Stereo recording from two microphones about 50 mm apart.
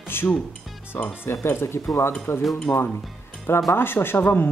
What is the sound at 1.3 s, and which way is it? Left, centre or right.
Speech, left.